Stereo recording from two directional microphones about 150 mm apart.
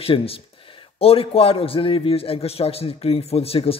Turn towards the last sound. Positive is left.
turn(degrees=40)  # may be behind; listen again after turning